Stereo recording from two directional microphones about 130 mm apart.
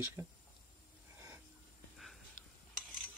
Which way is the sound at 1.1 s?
20° right (ahead or behind).